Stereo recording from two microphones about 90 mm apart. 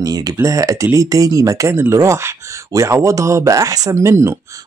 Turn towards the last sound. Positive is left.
turn(degrees=-30)  # may be behind; listen again after turning